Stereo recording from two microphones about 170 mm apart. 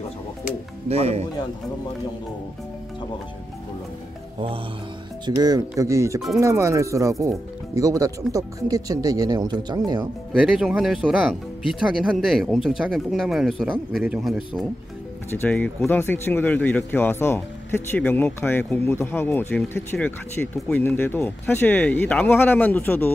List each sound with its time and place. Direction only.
0.8 s speech: 40° right (ahead or behind)
5.2 s speech: 20° right (ahead or behind)
10.3 s speech: 5° right (ahead or behind)
15.3 s speech: 10° left (ahead or behind)